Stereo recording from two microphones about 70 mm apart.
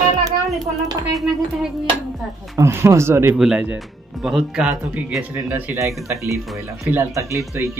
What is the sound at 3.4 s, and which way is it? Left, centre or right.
Speech, centre.